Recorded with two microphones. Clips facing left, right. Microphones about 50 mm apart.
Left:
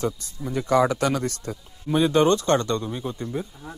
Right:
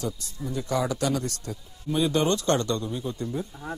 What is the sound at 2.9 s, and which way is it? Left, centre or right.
Speech, left.